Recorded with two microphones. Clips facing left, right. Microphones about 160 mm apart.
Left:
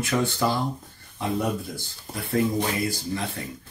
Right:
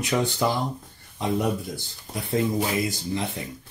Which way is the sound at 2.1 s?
15° right (ahead or behind).